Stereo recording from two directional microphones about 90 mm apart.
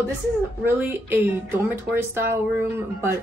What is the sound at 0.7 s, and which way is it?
Speech, 25° right (ahead or behind).